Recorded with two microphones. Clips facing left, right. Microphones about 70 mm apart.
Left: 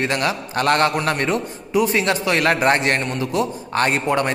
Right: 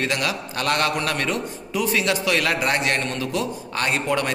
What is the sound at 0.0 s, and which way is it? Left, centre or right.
Speech, left.